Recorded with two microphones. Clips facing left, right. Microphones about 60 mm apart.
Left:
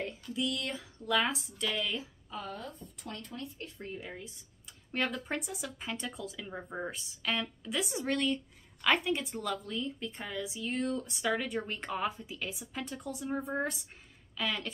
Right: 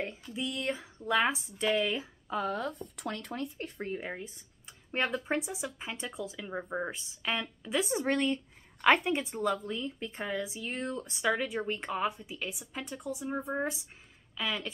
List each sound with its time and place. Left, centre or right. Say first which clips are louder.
0.3 s speech: even; right
2.2 s speech: right 8 dB; right
3.5 s speech: right 5 dB; right
4.9 s speech: right 3 dB; right
11.1 s a woman's voice: right 5 dB; centre